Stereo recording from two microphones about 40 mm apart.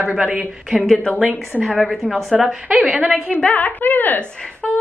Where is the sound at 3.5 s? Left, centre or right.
Left.